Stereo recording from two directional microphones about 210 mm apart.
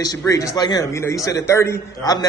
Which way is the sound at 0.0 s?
15° left (ahead or behind).